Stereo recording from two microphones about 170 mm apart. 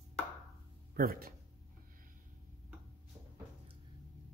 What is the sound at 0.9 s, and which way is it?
Speech, 60° right (ahead or behind).